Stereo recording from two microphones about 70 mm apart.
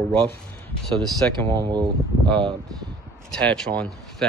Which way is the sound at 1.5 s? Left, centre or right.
Right.